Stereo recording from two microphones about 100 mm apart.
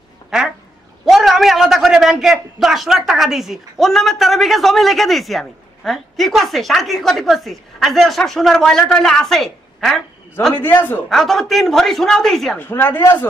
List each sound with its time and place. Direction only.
0.3 s a man's voice: 5° right (ahead or behind)
10.5 s a woman's voice: 20° left (ahead or behind)
11.1 s speech: centre (ahead or behind)
12.5 s a woman's voice: 20° left (ahead or behind)